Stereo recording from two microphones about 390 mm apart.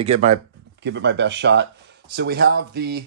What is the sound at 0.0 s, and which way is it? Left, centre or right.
Speech, centre.